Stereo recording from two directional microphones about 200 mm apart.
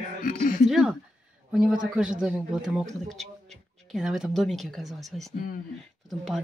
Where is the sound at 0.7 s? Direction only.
5° right (ahead or behind).